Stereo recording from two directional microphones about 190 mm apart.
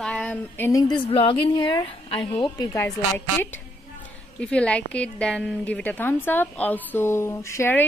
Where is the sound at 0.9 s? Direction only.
25° left (ahead or behind).